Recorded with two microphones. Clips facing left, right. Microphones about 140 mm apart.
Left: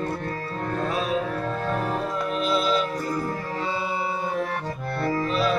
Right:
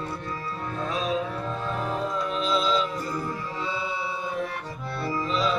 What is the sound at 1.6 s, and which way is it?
Music, 60° left (ahead or behind).